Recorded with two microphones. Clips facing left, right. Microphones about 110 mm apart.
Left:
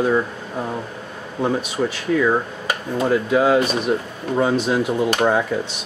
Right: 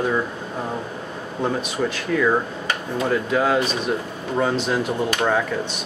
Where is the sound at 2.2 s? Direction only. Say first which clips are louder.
Right 1 dB; 10° left (ahead or behind).